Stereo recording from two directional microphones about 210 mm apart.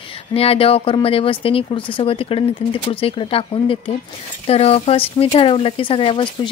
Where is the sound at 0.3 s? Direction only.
25° left (ahead or behind).